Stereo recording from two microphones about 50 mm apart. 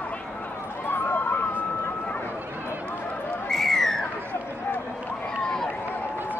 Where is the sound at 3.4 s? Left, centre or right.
Centre.